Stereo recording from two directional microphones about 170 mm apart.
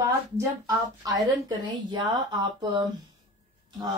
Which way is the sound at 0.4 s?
20° right (ahead or behind).